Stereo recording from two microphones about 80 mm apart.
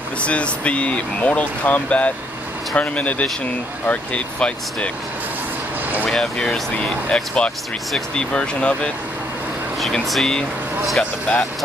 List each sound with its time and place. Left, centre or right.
0.2 s speech: centre
6.0 s speech: centre
9.8 s speech: centre